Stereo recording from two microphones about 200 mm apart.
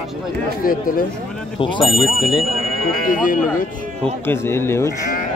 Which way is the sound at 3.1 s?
45° left (ahead or behind).